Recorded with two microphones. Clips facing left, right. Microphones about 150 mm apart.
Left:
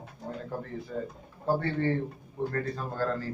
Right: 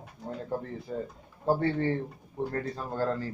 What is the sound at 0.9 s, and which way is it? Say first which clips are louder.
Speech: right 1 dB; 30° right (ahead or behind).